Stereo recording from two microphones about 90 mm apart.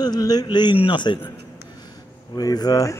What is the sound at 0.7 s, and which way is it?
Speech, 70° left (ahead or behind).